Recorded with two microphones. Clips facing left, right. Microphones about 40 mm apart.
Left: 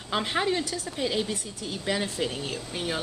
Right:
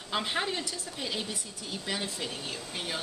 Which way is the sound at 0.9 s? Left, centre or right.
Centre.